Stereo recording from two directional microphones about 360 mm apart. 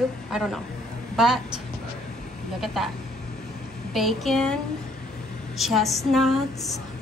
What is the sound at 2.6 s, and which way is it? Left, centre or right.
Speech, centre.